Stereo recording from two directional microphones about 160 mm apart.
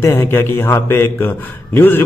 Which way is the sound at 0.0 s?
15° left (ahead or behind).